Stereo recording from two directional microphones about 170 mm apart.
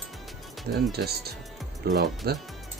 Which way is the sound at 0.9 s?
70° right (ahead or behind).